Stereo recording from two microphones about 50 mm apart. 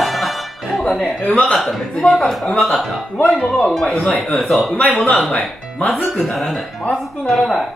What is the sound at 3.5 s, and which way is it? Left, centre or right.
A man's voice, centre.